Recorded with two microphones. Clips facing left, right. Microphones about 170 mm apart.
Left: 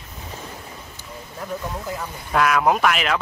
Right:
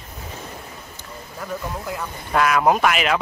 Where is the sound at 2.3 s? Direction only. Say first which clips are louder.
Right 1 dB; centre (ahead or behind).